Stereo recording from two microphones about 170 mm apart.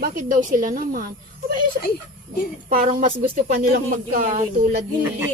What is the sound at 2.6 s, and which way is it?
A woman's voice, 55° right (ahead or behind).